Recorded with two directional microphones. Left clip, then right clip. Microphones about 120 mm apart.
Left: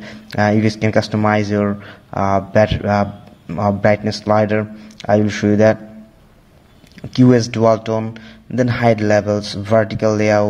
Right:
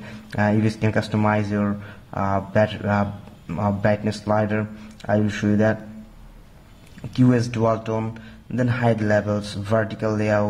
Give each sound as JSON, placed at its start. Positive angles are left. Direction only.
{"t": 0.0, "sound": "speech", "side_deg": 35}
{"t": 7.1, "sound": "speech", "side_deg": 35}